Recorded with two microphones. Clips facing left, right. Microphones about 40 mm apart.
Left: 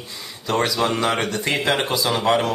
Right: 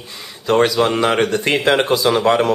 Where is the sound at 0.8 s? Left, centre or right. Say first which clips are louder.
Right 5 dB; right.